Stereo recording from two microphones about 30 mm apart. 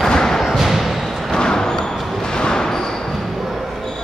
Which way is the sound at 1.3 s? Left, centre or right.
Left.